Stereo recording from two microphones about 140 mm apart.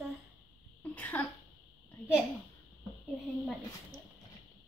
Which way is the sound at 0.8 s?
15° left (ahead or behind).